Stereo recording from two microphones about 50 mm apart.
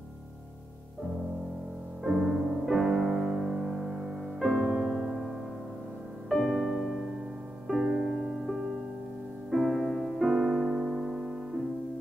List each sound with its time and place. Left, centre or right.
2.0 s music: centre
4.6 s music: centre
4.9 s piano: centre
6.2 s music: centre